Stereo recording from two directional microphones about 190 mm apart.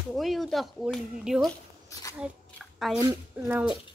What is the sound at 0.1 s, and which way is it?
Speech, centre (ahead or behind).